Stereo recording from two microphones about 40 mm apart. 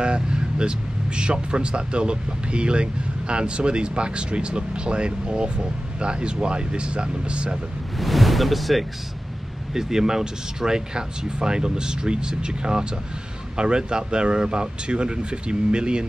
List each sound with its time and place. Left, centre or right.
0.0 s speech: right
8.0 s speech: centre
9.8 s speech: centre